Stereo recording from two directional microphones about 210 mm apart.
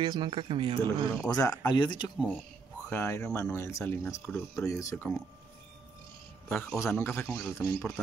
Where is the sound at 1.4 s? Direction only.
20° left (ahead or behind).